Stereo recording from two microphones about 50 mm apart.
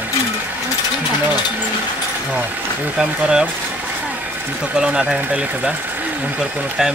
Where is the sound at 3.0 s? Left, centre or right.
Centre.